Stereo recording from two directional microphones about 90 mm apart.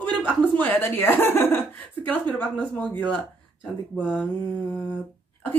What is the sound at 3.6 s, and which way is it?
Speech, 5° right (ahead or behind).